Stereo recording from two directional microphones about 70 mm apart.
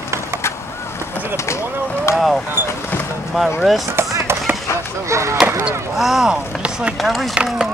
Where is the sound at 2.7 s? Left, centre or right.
Left.